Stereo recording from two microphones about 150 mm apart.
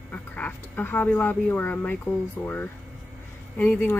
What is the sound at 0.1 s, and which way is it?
Speech, 10° left (ahead or behind).